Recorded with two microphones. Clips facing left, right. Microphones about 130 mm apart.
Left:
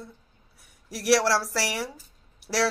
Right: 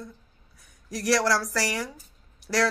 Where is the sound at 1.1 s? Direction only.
25° left (ahead or behind).